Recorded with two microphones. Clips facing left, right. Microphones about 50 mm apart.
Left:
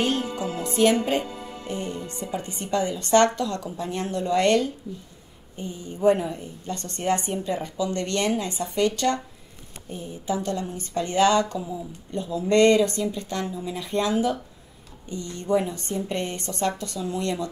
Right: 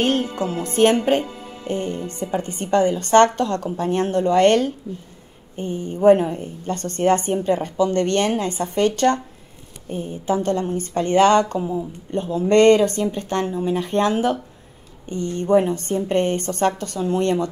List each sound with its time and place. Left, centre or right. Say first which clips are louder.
0.0 s a woman's voice: right 5 dB; right